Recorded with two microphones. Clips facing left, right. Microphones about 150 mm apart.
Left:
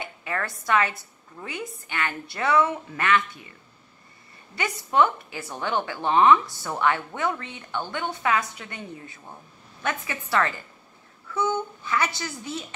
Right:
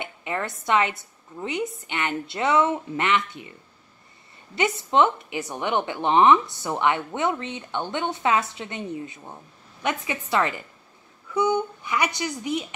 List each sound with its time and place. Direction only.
0.0 s a woman's voice: 20° right (ahead or behind)
4.6 s a woman's voice: 20° right (ahead or behind)